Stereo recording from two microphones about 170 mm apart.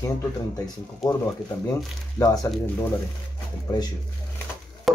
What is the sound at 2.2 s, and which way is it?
Speech, 15° left (ahead or behind).